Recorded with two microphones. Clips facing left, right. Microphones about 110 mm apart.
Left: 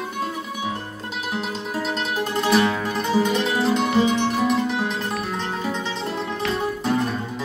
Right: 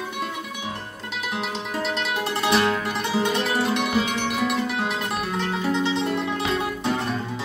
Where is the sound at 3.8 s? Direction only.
30° left (ahead or behind).